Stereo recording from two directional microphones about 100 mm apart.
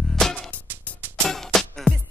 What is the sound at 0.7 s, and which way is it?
Music, 20° right (ahead or behind).